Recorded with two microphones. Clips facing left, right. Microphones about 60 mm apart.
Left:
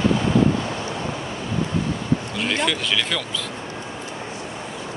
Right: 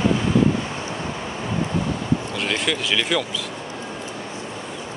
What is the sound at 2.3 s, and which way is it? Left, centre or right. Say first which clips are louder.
Speech: left 1 dB; centre.